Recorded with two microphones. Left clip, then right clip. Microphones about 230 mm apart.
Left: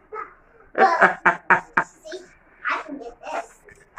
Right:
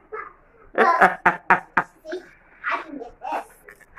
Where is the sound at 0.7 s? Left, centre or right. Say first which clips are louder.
Even; right.